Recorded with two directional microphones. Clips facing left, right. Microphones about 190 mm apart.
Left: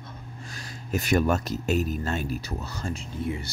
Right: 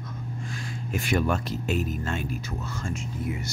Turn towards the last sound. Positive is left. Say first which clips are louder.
# left 1 dB
turn(degrees=30)  # may be behind; listen again after turning